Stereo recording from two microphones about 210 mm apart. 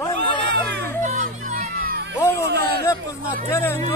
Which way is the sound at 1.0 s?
35° right (ahead or behind).